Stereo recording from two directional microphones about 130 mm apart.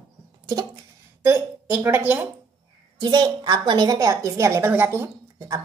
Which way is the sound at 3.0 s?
35° right (ahead or behind).